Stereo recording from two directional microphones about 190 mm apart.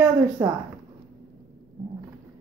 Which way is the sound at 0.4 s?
15° right (ahead or behind).